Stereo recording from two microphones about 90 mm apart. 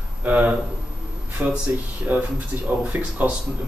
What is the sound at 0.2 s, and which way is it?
Speech, 15° right (ahead or behind).